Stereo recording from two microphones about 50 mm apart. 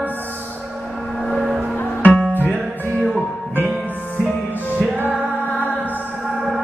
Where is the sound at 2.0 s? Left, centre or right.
Left.